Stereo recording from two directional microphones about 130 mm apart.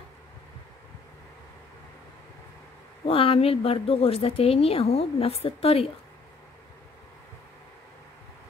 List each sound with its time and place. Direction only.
3.1 s speech: 45° left (ahead or behind)